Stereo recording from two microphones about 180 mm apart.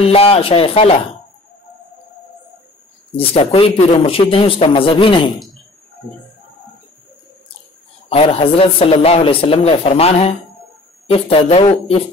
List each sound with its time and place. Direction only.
0.0 s a man's voice: 30° left (ahead or behind)
3.1 s a man's voice: 30° left (ahead or behind)
8.1 s a man's voice: 35° left (ahead or behind)